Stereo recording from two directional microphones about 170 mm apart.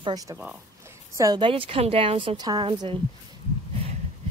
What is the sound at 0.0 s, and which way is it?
A woman's voice, 20° right (ahead or behind).